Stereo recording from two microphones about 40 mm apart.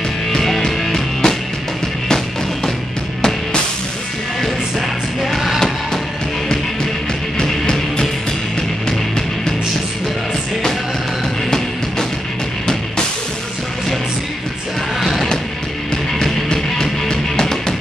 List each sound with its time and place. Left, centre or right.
0.3 s music: centre
5.2 s music: centre
7.3 s music: centre
15.0 s music: centre
16.1 s music: centre